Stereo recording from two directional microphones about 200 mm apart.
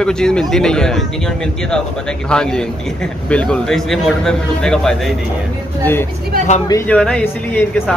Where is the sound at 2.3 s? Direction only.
5° left (ahead or behind).